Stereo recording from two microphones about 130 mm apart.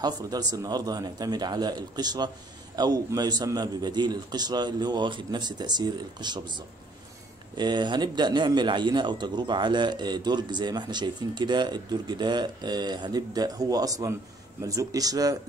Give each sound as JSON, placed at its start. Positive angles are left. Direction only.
{"t": 0.0, "sound": "speech", "side_deg": -30}